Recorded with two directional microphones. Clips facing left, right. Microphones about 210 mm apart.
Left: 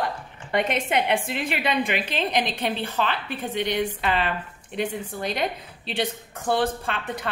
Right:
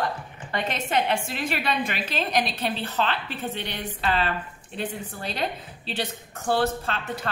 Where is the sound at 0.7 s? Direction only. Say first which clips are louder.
Left 2 dB; 15° left (ahead or behind).